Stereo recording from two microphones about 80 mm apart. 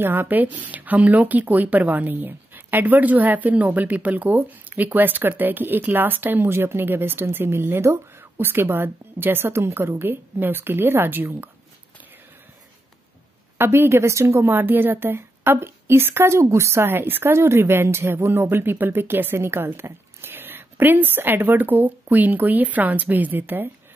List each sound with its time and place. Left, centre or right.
0.0 s speech: right
13.6 s speech: right